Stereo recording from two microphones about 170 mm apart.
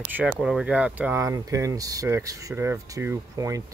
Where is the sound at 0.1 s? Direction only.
5° right (ahead or behind).